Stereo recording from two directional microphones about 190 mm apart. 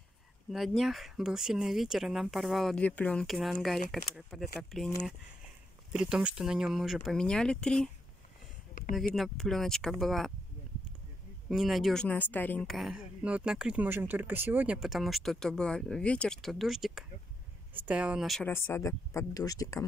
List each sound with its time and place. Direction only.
0.5 s speech: centre (ahead or behind)
9.1 s speech: centre (ahead or behind)
11.4 s speech: centre (ahead or behind)
18.4 s speech: 15° left (ahead or behind)